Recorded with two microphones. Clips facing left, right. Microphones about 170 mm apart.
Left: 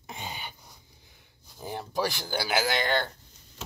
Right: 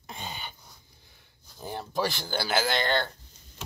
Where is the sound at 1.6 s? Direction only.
5° left (ahead or behind).